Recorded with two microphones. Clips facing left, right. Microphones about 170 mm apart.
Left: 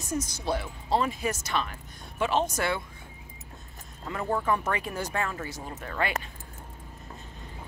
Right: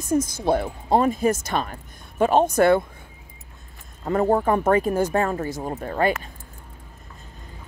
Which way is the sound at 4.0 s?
45° right (ahead or behind).